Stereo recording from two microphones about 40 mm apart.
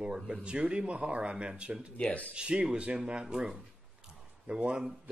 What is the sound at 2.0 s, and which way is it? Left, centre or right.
Speech, left.